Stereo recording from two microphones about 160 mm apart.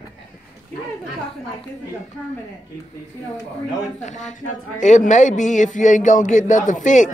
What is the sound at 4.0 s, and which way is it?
A woman's voice, 50° left (ahead or behind).